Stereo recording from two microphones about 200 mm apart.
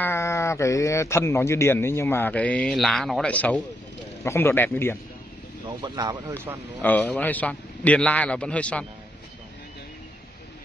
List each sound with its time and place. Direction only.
0.0 s speech: 15° left (ahead or behind)
5.8 s speech: 20° right (ahead or behind)
6.3 s speech: 10° right (ahead or behind)
6.8 s speech: 10° left (ahead or behind)